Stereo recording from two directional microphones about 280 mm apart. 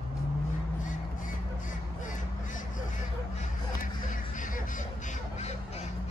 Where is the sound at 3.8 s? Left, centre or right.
Left.